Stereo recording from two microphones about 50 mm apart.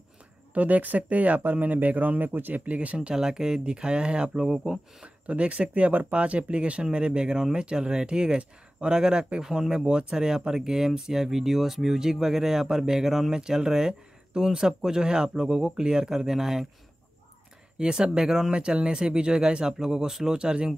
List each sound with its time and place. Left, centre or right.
0.6 s speech: right
3.2 s speech: centre
17.7 s speech: centre